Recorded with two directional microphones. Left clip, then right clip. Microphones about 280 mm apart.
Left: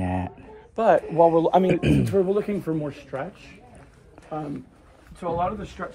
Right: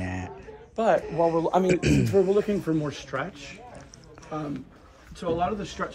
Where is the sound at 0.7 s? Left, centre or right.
Left.